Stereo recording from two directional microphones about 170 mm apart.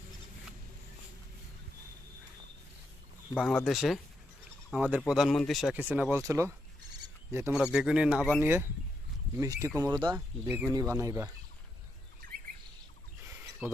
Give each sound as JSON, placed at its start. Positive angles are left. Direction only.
{"t": 3.3, "sound": "speech", "side_deg": 0}
{"t": 7.7, "sound": "speech", "side_deg": -5}
{"t": 8.4, "sound": "speech", "side_deg": -15}
{"t": 12.2, "sound": "bird", "side_deg": -55}